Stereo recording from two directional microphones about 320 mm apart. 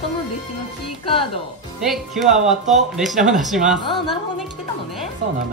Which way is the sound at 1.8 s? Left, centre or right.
Centre.